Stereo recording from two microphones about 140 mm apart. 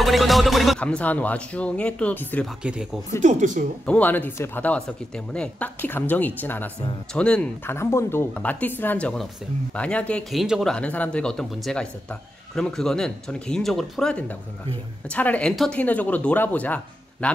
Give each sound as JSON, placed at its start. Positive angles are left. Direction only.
{"t": 0.0, "sound": "speech", "side_deg": 0}
{"t": 2.6, "sound": "speech", "side_deg": -5}
{"t": 3.2, "sound": "speech", "side_deg": -60}
{"t": 3.8, "sound": "speech", "side_deg": 10}